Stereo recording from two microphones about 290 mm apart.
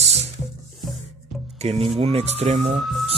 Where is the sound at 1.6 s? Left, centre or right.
Right.